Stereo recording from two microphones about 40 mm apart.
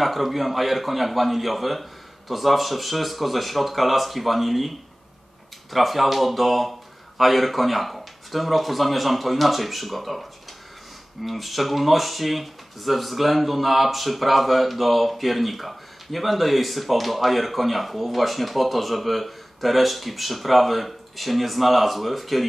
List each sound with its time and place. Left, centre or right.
0.0 s speech: centre
11.2 s speech: centre